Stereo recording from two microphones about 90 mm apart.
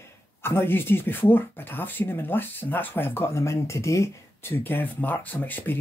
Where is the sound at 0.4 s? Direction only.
25° left (ahead or behind).